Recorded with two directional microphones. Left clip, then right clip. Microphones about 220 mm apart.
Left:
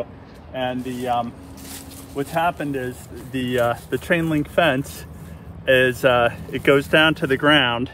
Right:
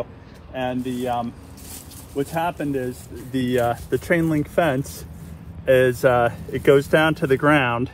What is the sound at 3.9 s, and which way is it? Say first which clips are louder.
Speech: even; 15° right (ahead or behind).